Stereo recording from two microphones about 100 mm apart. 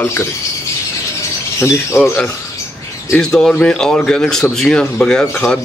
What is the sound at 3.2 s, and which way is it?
A man's voice, 5° left (ahead or behind).